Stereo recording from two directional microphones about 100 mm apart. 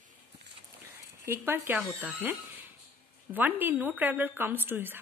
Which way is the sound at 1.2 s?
25° right (ahead or behind).